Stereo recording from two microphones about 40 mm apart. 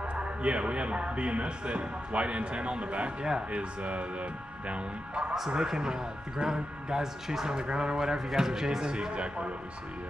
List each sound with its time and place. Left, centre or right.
0.1 s a man's voice: right
5.5 s a man's voice: centre